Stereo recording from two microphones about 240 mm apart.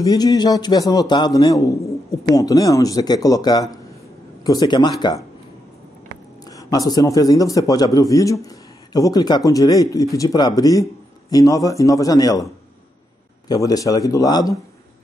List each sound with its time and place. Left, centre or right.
0.0 s a man's voice: centre
6.4 s a man's voice: centre
13.5 s a man's voice: centre